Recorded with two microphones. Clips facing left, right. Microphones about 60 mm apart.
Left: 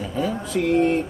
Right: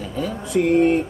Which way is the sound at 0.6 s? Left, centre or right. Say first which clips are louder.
Right 3 dB; right.